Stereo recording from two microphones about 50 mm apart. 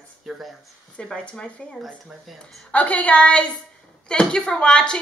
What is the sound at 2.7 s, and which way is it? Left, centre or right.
Speech, left.